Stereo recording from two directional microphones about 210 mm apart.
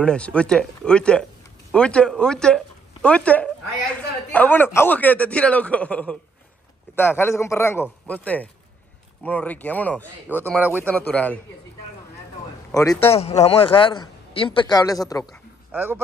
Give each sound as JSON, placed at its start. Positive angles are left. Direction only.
{"t": 0.0, "sound": "speech", "side_deg": 5}
{"t": 1.7, "sound": "a sound", "side_deg": 5}
{"t": 4.7, "sound": "speech", "side_deg": 10}
{"t": 10.6, "sound": "speech", "side_deg": -10}
{"t": 10.9, "sound": "speech", "side_deg": 5}
{"t": 13.0, "sound": "a man's voice", "side_deg": 30}
{"t": 15.7, "sound": "speech", "side_deg": -10}